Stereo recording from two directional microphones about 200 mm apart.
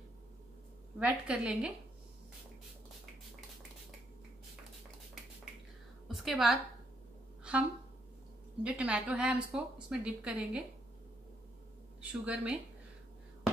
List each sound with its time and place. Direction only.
0.9 s a woman's voice: 5° right (ahead or behind)
6.0 s a sound: centre (ahead or behind)
8.6 s a woman's voice: 5° right (ahead or behind)
12.0 s a woman's voice: 5° right (ahead or behind)